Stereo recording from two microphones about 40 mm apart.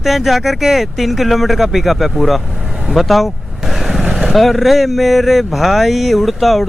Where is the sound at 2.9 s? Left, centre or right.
Centre.